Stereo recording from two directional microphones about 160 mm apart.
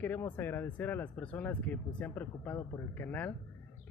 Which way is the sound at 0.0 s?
10° left (ahead or behind).